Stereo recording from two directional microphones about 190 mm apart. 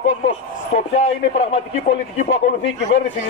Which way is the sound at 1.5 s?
35° left (ahead or behind).